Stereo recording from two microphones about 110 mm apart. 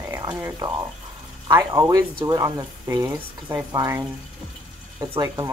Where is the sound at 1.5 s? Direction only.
30° right (ahead or behind).